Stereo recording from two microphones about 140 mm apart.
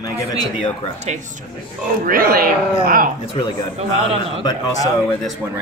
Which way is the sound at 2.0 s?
90° right.